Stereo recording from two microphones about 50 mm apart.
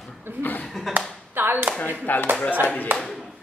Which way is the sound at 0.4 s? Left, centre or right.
Left.